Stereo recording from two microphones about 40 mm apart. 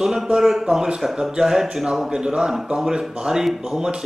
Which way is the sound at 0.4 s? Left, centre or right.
Centre.